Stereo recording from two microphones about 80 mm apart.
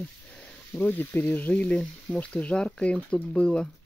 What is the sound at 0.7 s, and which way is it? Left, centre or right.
Speech, left.